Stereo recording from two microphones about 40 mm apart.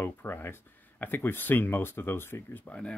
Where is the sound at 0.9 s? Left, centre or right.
Left.